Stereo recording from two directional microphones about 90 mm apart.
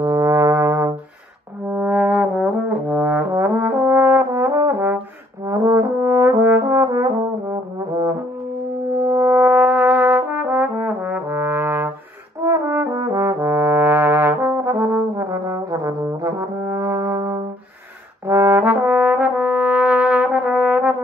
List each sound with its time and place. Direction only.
0.0 s brass instrument: 40° right (ahead or behind)
1.7 s trombone: 15° right (ahead or behind); by 4.9 s 35° right (ahead or behind)
5.4 s brass instrument: 35° right (ahead or behind)
9.0 s brass instrument: 25° right (ahead or behind)